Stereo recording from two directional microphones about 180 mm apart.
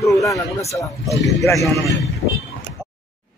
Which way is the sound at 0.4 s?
15° left (ahead or behind).